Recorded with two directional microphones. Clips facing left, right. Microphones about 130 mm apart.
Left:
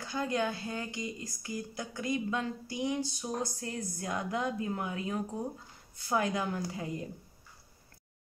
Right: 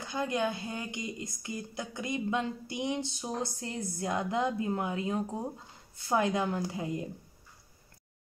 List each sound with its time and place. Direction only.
0.0 s speech: 20° right (ahead or behind)